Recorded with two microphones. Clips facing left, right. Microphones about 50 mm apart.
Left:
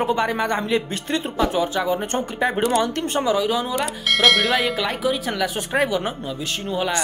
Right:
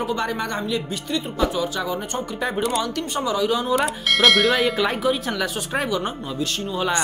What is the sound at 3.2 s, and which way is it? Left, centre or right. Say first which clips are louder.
Speech: left 2 dB; centre.